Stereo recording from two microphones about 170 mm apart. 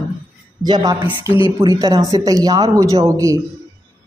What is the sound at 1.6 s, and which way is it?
Speech, 20° right (ahead or behind).